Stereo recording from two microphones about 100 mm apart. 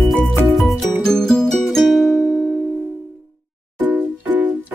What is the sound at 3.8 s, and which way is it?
Music, 15° right (ahead or behind).